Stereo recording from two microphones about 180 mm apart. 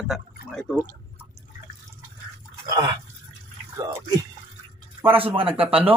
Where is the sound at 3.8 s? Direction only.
20° right (ahead or behind).